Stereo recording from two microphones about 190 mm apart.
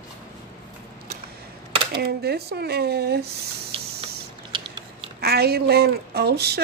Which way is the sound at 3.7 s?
30° right (ahead or behind).